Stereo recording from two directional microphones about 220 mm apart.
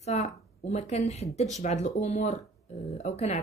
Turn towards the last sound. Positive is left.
turn(degrees=30)  # may be behind; listen again after turning